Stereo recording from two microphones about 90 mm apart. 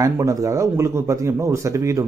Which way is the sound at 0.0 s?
40° right (ahead or behind).